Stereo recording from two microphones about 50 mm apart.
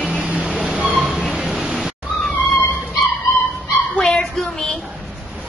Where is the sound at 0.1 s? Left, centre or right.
Centre.